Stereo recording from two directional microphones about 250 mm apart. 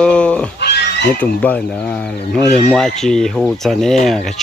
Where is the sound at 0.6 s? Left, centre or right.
Left.